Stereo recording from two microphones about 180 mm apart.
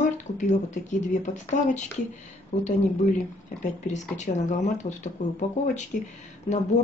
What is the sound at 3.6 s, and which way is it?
Speech, 40° left (ahead or behind).